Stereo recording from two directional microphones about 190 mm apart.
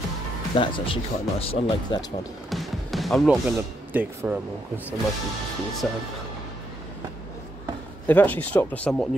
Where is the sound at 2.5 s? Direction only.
Centre (ahead or behind).